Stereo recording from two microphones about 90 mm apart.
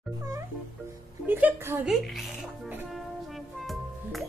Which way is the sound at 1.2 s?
20° right (ahead or behind).